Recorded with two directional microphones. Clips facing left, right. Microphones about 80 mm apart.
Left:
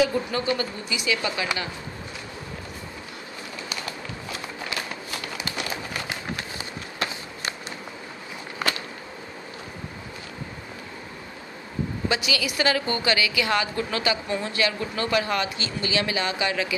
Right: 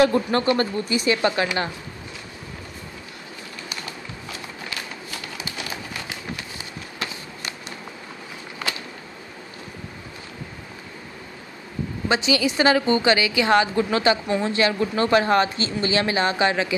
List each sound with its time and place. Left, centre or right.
0.0 s speech: right
12.1 s a woman's voice: right